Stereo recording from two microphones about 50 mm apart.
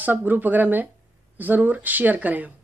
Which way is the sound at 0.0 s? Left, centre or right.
Right.